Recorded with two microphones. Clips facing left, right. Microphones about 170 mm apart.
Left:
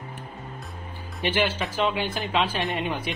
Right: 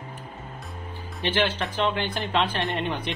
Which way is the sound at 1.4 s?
5° left (ahead or behind).